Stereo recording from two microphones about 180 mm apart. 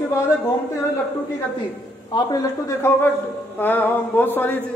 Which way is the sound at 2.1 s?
20° left (ahead or behind).